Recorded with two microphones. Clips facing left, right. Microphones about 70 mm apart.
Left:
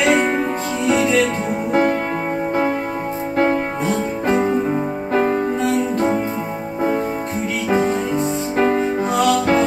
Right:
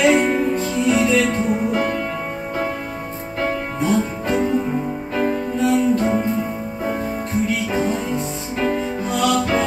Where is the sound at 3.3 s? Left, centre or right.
Left.